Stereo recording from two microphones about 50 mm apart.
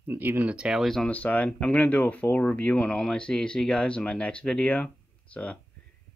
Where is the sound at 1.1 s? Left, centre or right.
Left.